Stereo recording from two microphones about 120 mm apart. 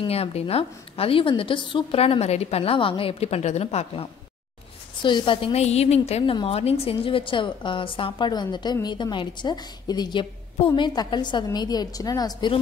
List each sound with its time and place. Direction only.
0.0 s a woman's voice: 55° left (ahead or behind)
5.0 s a woman's voice: 45° left (ahead or behind)